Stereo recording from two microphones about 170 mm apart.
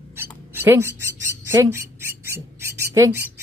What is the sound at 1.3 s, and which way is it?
Speech, 15° right (ahead or behind).